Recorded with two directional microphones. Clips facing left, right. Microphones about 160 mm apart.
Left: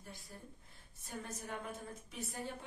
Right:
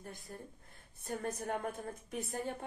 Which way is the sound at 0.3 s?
50° right (ahead or behind).